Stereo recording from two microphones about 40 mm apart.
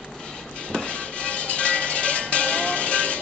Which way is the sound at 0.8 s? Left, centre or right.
Left.